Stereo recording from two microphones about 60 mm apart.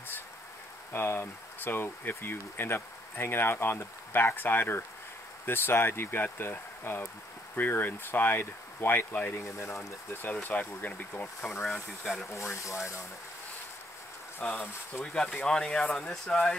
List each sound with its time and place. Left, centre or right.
0.9 s speech: left
10.3 s speech: left
11.6 s speech: centre
12.3 s speech: left
14.4 s speech: left
15.4 s speech: centre